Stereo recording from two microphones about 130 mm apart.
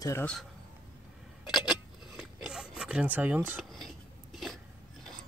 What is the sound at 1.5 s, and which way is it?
Scissors, 5° right (ahead or behind).